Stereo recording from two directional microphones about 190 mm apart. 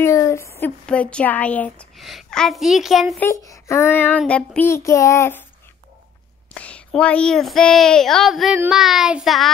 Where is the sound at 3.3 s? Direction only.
15° left (ahead or behind).